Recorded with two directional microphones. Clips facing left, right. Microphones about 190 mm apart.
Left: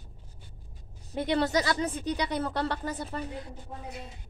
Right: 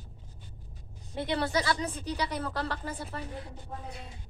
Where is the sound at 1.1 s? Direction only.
20° left (ahead or behind).